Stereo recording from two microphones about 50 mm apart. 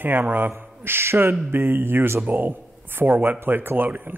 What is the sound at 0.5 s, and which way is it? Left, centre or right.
Speech, right.